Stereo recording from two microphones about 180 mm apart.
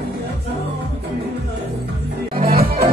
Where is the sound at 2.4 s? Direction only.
55° right (ahead or behind).